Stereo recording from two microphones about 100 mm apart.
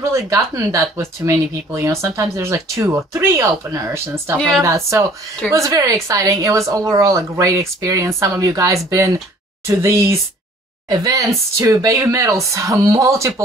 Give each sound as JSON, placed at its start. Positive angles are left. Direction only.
{"t": 0.0, "sound": "speech", "side_deg": -30}
{"t": 4.4, "sound": "a woman's voice", "side_deg": 5}
{"t": 4.6, "sound": "speech", "side_deg": -30}